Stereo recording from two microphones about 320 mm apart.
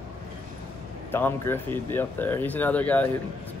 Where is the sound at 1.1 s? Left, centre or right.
Centre.